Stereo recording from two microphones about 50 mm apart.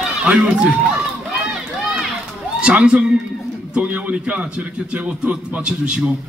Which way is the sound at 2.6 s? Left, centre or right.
Right.